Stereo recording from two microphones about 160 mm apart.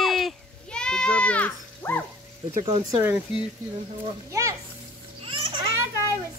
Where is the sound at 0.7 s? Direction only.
5° left (ahead or behind).